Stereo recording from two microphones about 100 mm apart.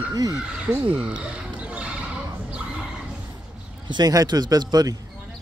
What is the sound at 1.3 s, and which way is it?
Basketball bounce, 10° right (ahead or behind).